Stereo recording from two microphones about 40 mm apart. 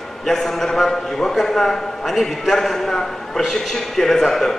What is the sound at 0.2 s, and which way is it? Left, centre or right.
A man's voice, centre.